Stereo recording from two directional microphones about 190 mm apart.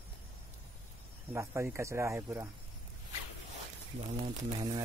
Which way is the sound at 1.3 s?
15° right (ahead or behind).